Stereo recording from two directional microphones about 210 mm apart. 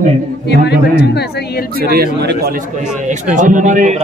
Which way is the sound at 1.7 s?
45° right (ahead or behind).